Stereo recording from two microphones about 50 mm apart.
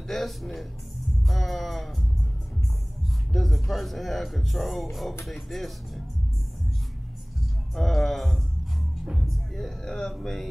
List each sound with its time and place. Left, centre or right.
0.1 s speech: centre
3.3 s speech: centre
7.7 s speech: centre
9.0 s speech: centre
9.3 s speech: centre